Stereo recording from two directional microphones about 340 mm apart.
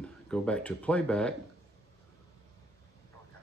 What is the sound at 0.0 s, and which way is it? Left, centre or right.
Speech, centre.